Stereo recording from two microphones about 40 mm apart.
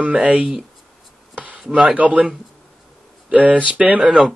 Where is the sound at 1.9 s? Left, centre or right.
Right.